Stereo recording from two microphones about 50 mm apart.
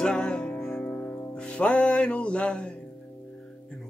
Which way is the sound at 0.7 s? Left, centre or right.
Left.